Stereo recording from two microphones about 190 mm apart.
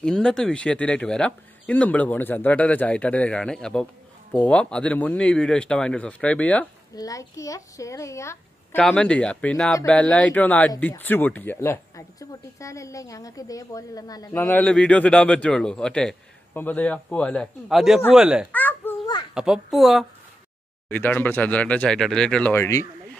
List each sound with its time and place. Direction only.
0.0 s speech: 5° left (ahead or behind)
8.7 s speech: 5° left (ahead or behind)
18.5 s babbling: 10° left (ahead or behind)
19.3 s speech: 5° right (ahead or behind); by 22.8 s 15° left (ahead or behind)